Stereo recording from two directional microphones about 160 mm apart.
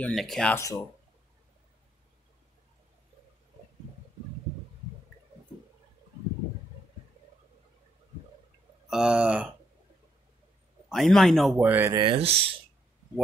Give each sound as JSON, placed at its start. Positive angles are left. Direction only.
{"t": 0.0, "sound": "a man's voice", "side_deg": 5}
{"t": 0.6, "sound": "speech", "side_deg": 20}
{"t": 8.9, "sound": "speech", "side_deg": -5}
{"t": 10.9, "sound": "a man's voice", "side_deg": 0}
{"t": 11.5, "sound": "speech", "side_deg": -15}
{"t": 11.9, "sound": "speech", "side_deg": -30}